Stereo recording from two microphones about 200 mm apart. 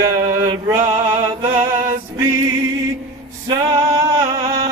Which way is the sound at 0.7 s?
30° right (ahead or behind).